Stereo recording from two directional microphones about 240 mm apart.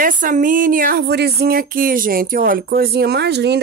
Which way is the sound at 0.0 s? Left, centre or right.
Right.